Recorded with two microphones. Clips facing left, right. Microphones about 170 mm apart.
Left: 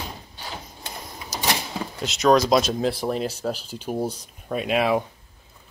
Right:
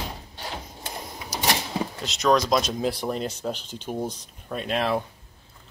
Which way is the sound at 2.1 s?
5° left (ahead or behind).